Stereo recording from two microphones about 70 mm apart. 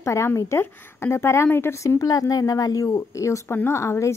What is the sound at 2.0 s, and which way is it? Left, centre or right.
A woman's voice, left.